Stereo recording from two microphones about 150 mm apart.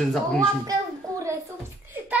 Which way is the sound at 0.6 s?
20° right (ahead or behind).